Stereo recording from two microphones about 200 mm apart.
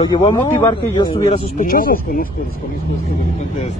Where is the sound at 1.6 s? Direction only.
45° left (ahead or behind).